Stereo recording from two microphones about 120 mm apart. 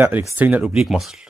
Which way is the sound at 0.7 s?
Centre (ahead or behind).